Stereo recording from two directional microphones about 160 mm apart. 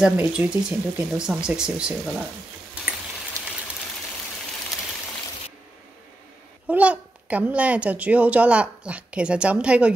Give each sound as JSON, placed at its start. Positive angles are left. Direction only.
{"t": 0.0, "sound": "speech", "side_deg": -10}
{"t": 3.4, "sound": "a sound", "side_deg": -20}
{"t": 6.7, "sound": "a child's voice", "side_deg": -10}